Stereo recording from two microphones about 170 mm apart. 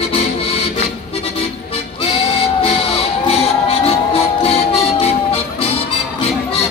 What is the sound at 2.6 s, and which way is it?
Music, 35° left (ahead or behind).